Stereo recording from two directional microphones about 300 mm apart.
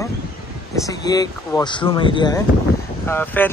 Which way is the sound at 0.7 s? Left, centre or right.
Centre.